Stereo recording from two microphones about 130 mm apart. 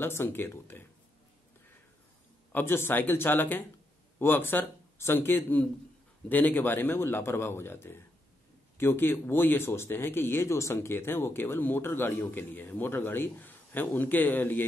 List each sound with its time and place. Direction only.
0.0 s speech: 20° left (ahead or behind)
2.5 s speech: 20° left (ahead or behind)